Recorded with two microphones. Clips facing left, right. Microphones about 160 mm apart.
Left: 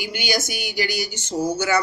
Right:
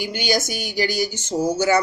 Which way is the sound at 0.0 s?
40° right (ahead or behind).